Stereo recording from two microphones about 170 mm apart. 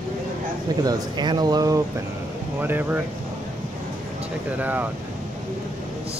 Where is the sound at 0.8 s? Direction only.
25° right (ahead or behind).